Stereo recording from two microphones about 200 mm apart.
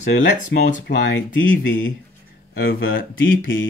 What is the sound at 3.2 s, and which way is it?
Mantra, 75° left (ahead or behind).